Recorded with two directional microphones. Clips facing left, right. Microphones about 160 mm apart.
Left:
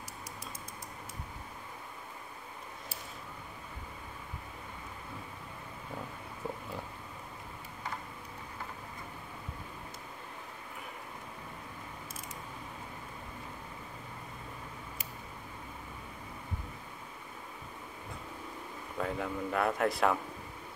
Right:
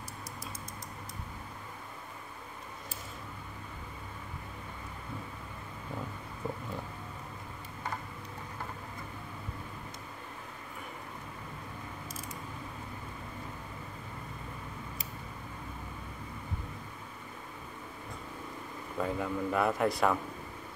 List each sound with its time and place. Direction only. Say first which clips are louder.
18.9 s speech: right 2 dB; centre (ahead or behind)